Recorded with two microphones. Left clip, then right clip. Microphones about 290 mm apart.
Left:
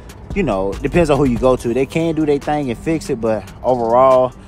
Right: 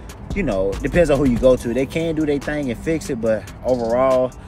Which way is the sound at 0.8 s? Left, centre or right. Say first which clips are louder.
Left 2 dB; centre.